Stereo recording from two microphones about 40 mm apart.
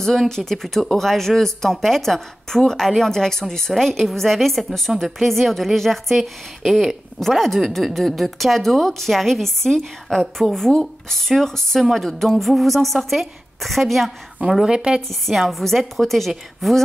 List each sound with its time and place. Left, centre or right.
0.0 s speech: centre
14.7 s a woman's voice: right
15.0 s speech: centre